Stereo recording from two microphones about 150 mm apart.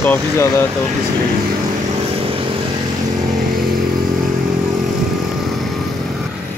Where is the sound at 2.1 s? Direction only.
40° right (ahead or behind).